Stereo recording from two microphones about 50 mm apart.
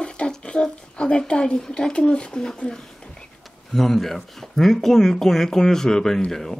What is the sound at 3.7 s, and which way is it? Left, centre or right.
Speech, centre.